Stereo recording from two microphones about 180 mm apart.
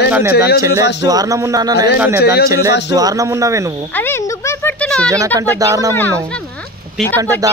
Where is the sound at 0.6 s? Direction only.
15° right (ahead or behind).